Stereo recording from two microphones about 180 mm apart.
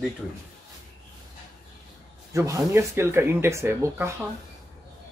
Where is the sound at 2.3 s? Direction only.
15° right (ahead or behind).